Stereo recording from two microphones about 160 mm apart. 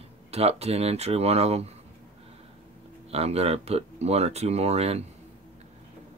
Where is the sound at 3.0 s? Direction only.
40° right (ahead or behind).